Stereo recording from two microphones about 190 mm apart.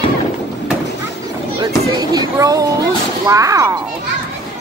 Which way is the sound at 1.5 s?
20° right (ahead or behind).